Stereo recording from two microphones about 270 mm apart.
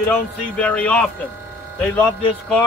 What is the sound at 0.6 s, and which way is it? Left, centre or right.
Speech, centre.